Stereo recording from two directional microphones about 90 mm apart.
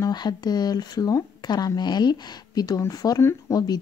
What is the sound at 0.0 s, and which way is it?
Speech, 50° left (ahead or behind).